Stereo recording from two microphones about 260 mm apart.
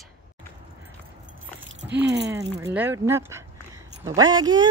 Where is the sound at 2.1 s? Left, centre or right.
Right.